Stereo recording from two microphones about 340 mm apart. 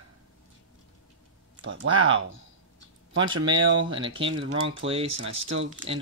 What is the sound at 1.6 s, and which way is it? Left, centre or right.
Speech, right.